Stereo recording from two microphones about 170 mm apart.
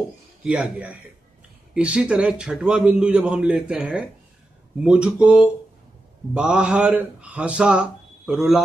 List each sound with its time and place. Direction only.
0.4 s a man's voice: 5° right (ahead or behind)